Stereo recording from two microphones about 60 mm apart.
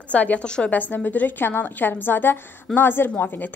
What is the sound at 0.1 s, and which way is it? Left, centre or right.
Speech, left.